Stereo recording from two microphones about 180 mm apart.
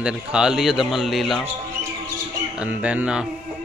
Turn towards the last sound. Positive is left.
turn(degrees=-5)  # may be behind; listen again after turning